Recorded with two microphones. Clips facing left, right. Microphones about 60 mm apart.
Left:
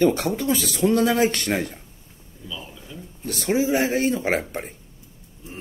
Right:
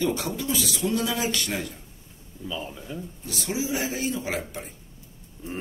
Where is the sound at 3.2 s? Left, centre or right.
Left.